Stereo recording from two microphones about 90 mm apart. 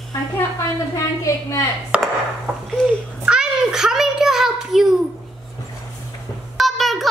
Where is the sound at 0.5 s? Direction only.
40° left (ahead or behind).